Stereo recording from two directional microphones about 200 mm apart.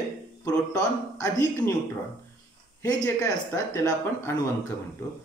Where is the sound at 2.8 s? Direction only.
15° left (ahead or behind).